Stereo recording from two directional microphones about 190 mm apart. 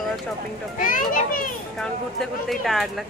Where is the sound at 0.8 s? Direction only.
45° left (ahead or behind).